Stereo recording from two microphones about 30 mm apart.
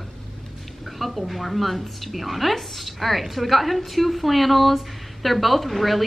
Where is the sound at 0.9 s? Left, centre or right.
Centre.